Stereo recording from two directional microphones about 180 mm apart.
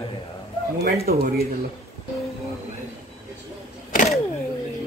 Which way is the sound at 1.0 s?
55° right (ahead or behind).